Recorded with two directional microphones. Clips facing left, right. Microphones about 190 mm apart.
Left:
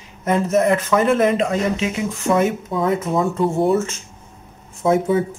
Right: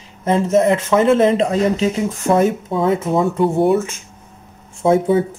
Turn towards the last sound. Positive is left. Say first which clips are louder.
# right 3 dB
turn(degrees=-30)  # may be behind; listen again after turning